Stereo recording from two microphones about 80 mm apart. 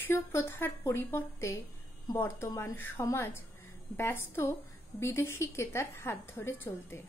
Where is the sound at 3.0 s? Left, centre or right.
Left.